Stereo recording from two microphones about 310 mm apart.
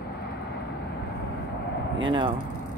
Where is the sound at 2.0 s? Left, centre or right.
Centre.